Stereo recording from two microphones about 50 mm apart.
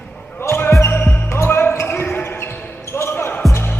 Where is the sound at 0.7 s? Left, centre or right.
Left.